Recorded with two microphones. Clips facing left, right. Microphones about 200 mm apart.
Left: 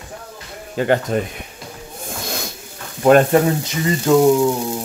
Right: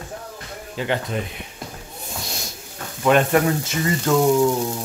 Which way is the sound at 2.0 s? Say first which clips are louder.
Left 6 dB; 55° left (ahead or behind).